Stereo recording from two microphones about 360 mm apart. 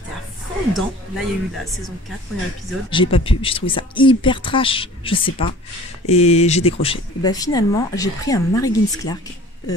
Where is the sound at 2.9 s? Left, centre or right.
Centre.